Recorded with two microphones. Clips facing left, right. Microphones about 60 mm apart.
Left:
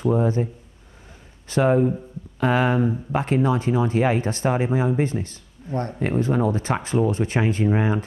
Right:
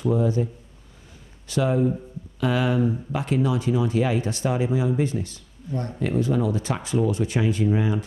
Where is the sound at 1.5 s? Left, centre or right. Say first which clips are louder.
Left 3 dB; left.